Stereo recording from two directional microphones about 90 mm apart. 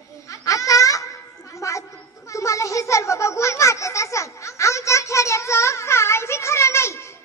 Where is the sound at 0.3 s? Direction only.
40° left (ahead or behind).